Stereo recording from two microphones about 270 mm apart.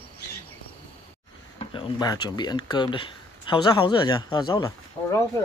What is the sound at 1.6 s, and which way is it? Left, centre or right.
Speech, centre.